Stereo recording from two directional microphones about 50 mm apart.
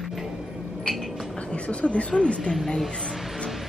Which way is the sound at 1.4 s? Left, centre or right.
Left.